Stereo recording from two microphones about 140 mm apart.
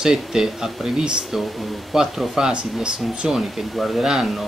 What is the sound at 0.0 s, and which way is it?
Speech, 5° right (ahead or behind).